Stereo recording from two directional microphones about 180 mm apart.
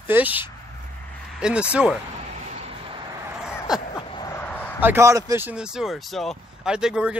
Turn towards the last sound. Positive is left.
turn(degrees=-5)  # may be behind; listen again after turning